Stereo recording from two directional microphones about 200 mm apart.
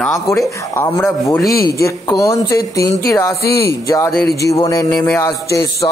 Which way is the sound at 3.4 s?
50° left (ahead or behind).